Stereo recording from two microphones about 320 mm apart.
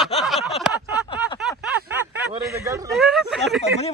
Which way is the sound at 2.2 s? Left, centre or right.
Centre.